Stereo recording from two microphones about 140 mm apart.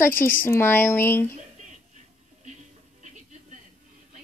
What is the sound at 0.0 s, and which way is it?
A woman's voice, 15° left (ahead or behind).